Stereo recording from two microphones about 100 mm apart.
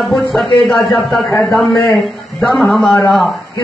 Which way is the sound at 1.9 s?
Centre (ahead or behind).